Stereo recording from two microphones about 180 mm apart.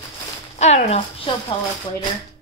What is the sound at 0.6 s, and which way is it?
Speech, 35° left (ahead or behind).